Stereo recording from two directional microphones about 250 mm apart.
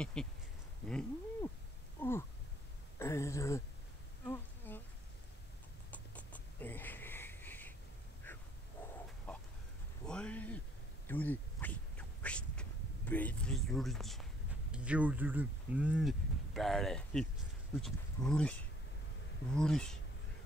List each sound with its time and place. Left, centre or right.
0.0 s speech: centre
0.8 s cat: centre
2.0 s a sound: centre
3.0 s speech: centre
4.3 s insect: centre
5.9 s a sound: centre
9.3 s chicken: centre
10.0 s a sound: centre
11.1 s dog: centre
14.7 s speech: centre